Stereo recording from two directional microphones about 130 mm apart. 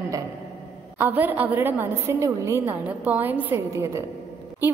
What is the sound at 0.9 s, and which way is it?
A woman's voice, 15° right (ahead or behind).